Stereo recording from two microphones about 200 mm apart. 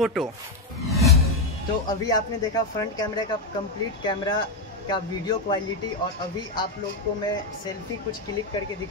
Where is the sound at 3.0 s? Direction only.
20° left (ahead or behind).